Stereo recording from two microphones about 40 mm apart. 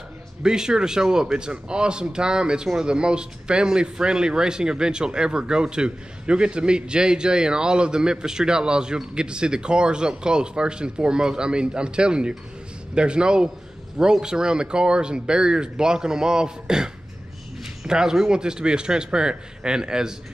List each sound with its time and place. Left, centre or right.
0.4 s a man's voice: centre